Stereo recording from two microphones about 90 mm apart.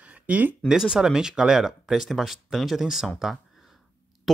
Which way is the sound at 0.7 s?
5° right (ahead or behind).